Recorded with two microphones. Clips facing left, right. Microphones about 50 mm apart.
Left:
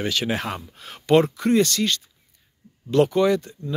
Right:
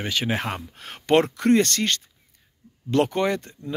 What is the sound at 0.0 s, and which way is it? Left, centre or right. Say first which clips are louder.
Speech: left 1 dB; right.